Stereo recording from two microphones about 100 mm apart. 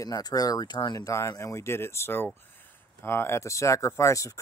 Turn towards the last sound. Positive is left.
turn(degrees=30)  # may be behind; listen again after turning